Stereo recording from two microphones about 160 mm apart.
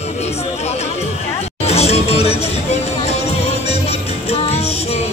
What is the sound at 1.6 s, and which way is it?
Music, 40° left (ahead or behind).